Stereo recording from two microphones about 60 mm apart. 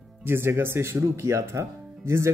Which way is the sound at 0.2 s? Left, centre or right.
Right.